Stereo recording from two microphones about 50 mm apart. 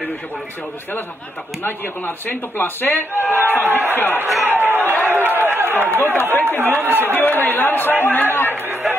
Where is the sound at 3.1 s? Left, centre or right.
Right.